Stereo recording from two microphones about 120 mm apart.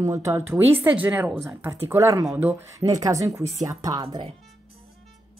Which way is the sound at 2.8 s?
30° right (ahead or behind).